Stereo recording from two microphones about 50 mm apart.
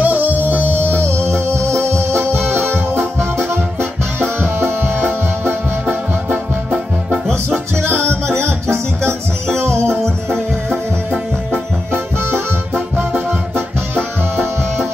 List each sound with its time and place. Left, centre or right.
0.0 s music: right
0.8 s music: left
1.5 s music: right
4.2 s music: right
7.7 s music: right
9.8 s music: centre
11.9 s music: right